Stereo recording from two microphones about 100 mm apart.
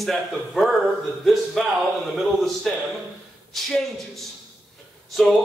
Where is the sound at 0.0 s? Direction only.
Centre (ahead or behind).